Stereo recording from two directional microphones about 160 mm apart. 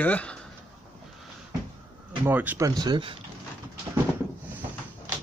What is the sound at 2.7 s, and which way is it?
Speech, 25° right (ahead or behind).